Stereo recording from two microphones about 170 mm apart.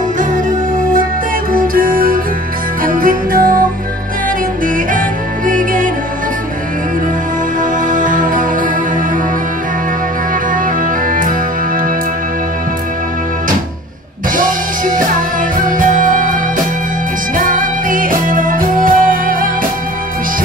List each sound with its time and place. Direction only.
0.2 s music: 50° right (ahead or behind)
5.5 s music: 50° right (ahead or behind)
7.9 s music: 55° right (ahead or behind)
14.3 s music: 50° right (ahead or behind)
17.4 s music: 50° right (ahead or behind)